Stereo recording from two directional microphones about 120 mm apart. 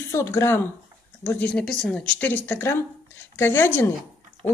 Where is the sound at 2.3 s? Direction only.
15° left (ahead or behind).